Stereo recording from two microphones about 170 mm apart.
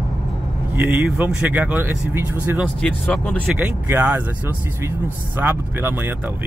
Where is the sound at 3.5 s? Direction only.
10° right (ahead or behind).